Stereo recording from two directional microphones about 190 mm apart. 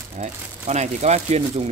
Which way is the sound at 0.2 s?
35° right (ahead or behind).